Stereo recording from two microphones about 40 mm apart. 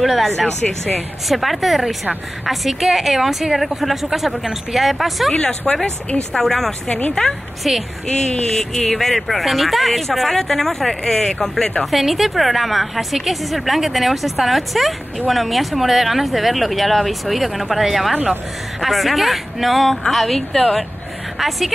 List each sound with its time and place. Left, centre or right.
0.0 s a woman's voice: centre
1.3 s a woman's voice: centre
5.3 s speech: left
6.3 s speech: centre
7.2 s speech: left
8.5 s speech: centre
11.8 s a woman's voice: centre